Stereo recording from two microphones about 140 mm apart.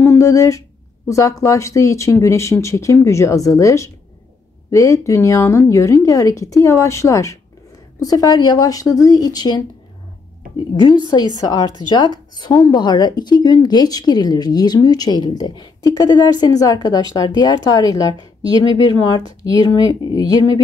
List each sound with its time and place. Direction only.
0.0 s speech: 20° left (ahead or behind)
10.7 s a woman's voice: 35° left (ahead or behind)